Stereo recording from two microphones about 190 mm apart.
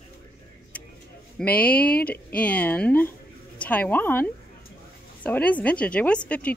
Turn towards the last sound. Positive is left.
turn(degrees=5)  # may be behind; listen again after turning